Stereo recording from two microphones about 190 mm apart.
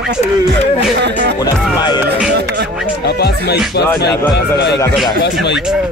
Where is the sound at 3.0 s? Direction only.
60° left (ahead or behind).